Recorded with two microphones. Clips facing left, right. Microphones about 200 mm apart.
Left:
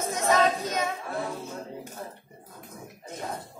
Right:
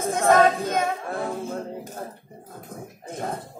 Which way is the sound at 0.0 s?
55° right (ahead or behind).